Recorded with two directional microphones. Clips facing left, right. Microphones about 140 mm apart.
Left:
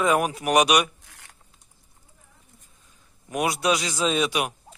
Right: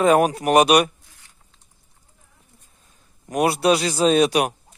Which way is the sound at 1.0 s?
75° left (ahead or behind).